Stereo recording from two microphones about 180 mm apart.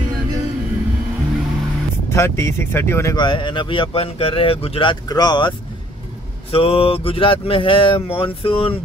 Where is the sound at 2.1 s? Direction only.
15° left (ahead or behind).